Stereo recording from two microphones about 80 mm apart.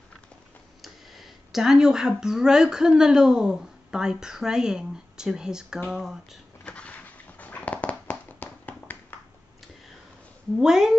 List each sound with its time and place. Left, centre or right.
0.8 s speech: centre
6.6 s a sound: centre
10.6 s speech: centre